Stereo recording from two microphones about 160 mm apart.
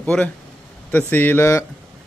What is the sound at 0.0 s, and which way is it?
Speech, 10° left (ahead or behind).